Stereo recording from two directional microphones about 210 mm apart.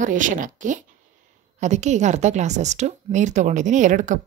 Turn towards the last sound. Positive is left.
turn(degrees=-35)  # may be behind; listen again after turning